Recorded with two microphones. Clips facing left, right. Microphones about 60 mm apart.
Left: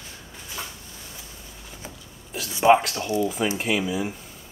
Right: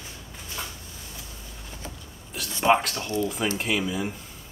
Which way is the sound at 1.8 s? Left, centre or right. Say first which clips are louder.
Even; centre.